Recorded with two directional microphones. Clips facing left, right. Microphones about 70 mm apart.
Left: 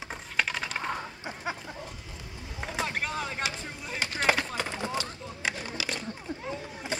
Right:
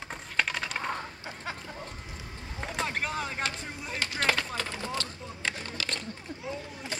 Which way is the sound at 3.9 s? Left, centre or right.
Centre.